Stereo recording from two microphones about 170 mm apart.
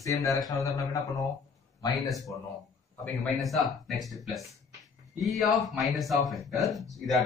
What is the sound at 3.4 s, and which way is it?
A man's voice, centre (ahead or behind).